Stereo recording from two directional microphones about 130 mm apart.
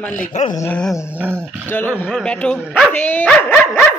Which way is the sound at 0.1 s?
70° left (ahead or behind).